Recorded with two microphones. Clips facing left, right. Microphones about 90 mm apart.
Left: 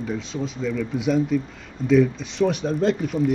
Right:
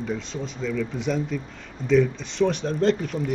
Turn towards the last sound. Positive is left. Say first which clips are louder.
# left 1 dB
turn(degrees=5)  # may be behind; listen again after turning